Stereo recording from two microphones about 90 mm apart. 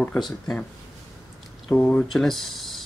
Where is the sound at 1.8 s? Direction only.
15° left (ahead or behind).